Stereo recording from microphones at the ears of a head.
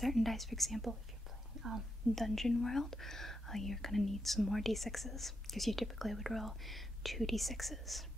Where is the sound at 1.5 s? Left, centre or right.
Right.